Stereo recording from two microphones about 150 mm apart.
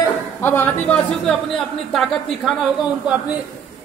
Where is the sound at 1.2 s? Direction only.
Centre (ahead or behind).